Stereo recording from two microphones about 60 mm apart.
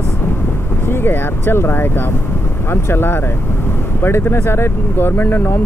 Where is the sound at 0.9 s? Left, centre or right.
Left.